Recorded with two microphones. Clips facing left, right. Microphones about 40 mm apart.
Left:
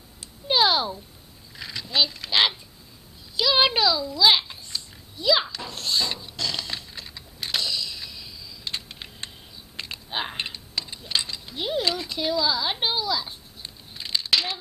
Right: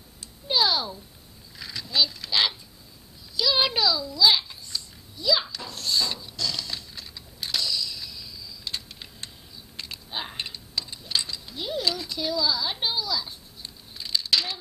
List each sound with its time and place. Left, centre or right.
0.5 s a sound: left
1.6 s a child's voice: centre
5.8 s mechanisms: left